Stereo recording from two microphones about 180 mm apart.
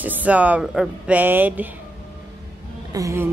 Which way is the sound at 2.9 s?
15° right (ahead or behind).